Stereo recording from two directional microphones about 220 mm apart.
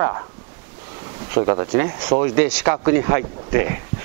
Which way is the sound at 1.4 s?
20° right (ahead or behind).